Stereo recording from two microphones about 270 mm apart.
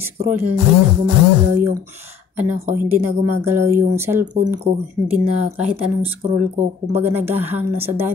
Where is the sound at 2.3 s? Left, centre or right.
Centre.